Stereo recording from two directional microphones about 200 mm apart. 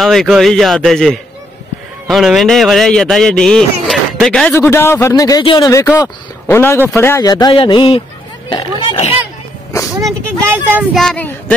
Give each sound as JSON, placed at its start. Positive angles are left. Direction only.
{"t": 0.0, "sound": "speech", "side_deg": 0}
{"t": 10.0, "sound": "speech", "side_deg": -5}